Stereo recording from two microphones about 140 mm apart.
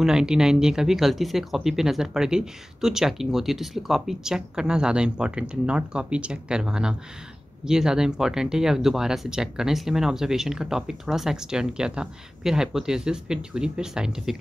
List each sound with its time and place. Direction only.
0.0 s speech: 5° right (ahead or behind)